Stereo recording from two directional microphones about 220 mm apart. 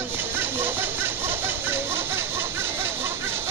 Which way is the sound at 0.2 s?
10° right (ahead or behind).